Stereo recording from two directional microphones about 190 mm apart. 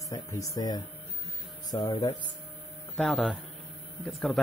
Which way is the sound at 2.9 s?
5° left (ahead or behind).